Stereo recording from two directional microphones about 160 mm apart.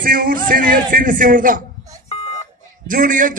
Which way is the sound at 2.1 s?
40° left (ahead or behind).